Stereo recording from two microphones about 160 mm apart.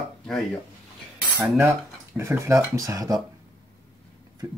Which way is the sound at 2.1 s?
15° right (ahead or behind).